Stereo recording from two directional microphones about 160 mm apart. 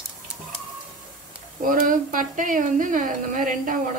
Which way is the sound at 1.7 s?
55° right (ahead or behind).